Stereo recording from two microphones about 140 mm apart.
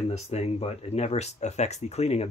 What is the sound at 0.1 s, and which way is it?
Speech, 50° left (ahead or behind).